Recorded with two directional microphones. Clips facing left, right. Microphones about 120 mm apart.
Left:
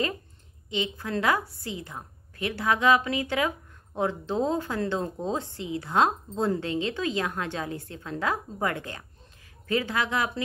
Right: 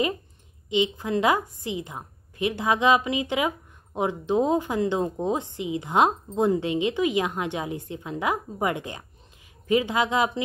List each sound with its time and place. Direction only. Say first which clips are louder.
0.7 s a woman's voice: right 6 dB; 20° right (ahead or behind)